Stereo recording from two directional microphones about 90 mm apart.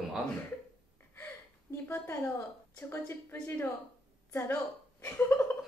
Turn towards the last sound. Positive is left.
turn(degrees=25)  # may be behind; listen again after turning